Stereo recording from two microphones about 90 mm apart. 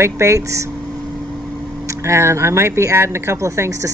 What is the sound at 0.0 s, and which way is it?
Speech, 35° right (ahead or behind).